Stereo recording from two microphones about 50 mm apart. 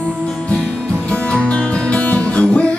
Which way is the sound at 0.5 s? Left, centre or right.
Centre.